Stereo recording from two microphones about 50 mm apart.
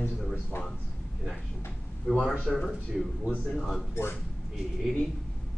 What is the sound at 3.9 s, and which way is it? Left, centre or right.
Speech, left.